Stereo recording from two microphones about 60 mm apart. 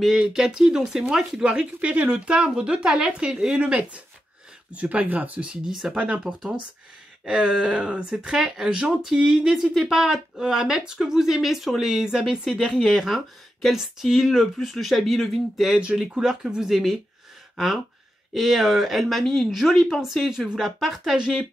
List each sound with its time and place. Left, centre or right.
0.2 s speech: centre
5.7 s speech: centre
18.3 s speech: centre